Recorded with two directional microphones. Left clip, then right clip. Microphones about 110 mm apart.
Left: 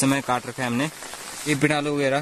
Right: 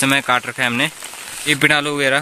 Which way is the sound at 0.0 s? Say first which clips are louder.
Right 7 dB; centre (ahead or behind).